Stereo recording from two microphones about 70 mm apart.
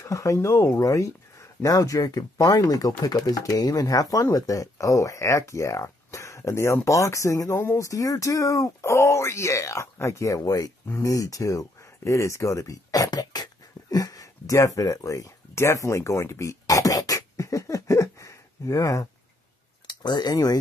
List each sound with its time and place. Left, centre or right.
0.0 s speech: left
7.8 s speech: left
10.4 s speech: left
12.0 s a sound: left
20.0 s speech: left